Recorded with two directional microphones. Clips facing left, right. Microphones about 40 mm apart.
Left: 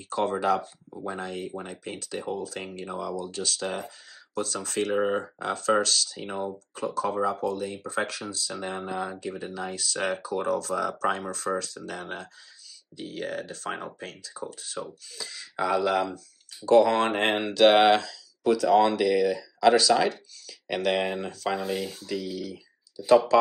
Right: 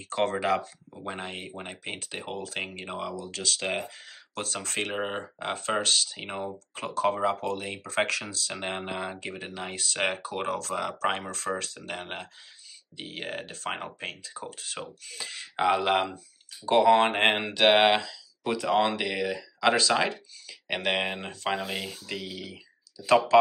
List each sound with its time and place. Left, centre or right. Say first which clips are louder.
0.1 s speech: left 1 dB; right
1.0 s speech: left 3 dB; right
2.2 s speech: left 5 dB; right
2.5 s speech: even; right
3.3 s speech: even; right
3.5 s speech: right 1 dB; right
4.9 s speech: left 6 dB; right
6.7 s speech: right 2 dB; right
16.6 s speech: left 1 dB; right
23.0 s speech: left 3 dB; right